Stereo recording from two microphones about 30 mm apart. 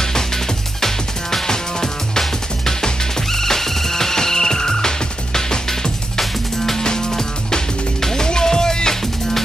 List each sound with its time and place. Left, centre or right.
0.7 s music: centre
6.8 s music: left